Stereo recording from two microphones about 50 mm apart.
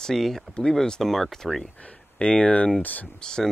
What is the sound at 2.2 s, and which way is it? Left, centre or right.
Speech, left.